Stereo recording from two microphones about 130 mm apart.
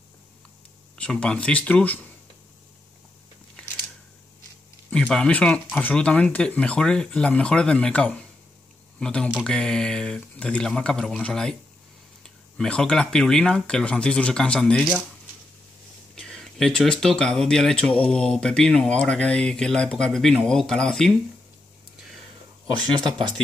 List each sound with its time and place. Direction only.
0.9 s speech: 10° left (ahead or behind)
3.6 s a sound: 10° left (ahead or behind)
4.9 s speech: 5° left (ahead or behind)
12.5 s speech: 5° left (ahead or behind)
16.2 s speech: 5° left (ahead or behind)
22.8 s speech: 35° right (ahead or behind)